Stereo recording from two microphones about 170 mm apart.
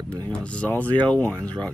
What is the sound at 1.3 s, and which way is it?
Speech, 20° right (ahead or behind).